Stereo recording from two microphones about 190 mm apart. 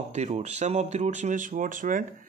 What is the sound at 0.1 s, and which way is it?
Speech, 35° right (ahead or behind).